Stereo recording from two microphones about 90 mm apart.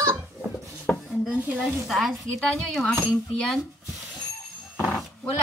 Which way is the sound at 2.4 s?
10° left (ahead or behind).